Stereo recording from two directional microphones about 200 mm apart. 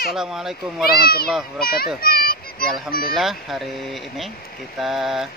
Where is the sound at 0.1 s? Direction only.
Centre (ahead or behind).